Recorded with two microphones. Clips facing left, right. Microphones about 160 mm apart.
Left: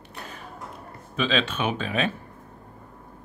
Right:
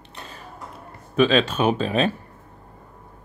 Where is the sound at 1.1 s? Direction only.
50° right (ahead or behind).